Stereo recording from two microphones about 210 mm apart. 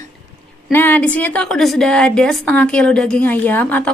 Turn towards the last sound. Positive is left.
turn(degrees=10)  # may be behind; listen again after turning